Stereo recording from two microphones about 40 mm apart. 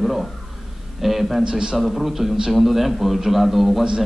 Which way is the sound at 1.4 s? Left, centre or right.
Right.